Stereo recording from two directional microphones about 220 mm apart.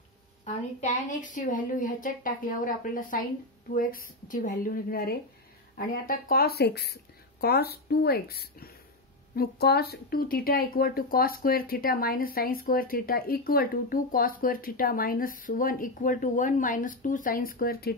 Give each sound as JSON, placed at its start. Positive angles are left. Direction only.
{"t": 0.7, "sound": "speech", "side_deg": 35}